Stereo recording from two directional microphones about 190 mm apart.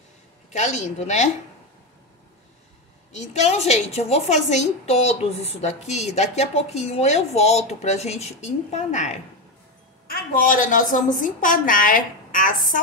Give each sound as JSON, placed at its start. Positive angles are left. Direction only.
{"t": 0.5, "sound": "a woman's voice", "side_deg": 40}
{"t": 3.1, "sound": "a woman's voice", "side_deg": 35}
{"t": 10.0, "sound": "a woman's voice", "side_deg": 50}